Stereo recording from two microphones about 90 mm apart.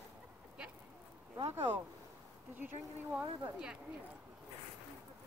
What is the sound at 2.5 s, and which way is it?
Speech, 20° right (ahead or behind).